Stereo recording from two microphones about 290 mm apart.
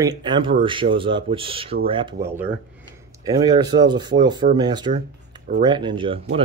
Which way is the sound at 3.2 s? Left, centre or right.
Centre.